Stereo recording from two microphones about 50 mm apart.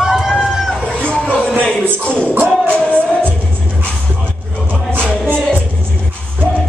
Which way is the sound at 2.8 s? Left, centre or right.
Right.